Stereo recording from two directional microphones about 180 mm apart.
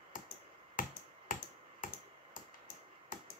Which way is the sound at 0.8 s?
50° left (ahead or behind).